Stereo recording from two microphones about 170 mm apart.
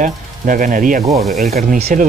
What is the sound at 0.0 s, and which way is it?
Speech, 50° right (ahead or behind).